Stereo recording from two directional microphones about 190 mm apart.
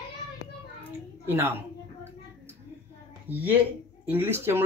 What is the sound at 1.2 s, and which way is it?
Speech, 10° right (ahead or behind).